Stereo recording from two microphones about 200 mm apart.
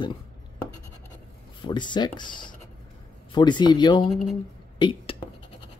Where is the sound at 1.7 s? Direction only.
20° left (ahead or behind).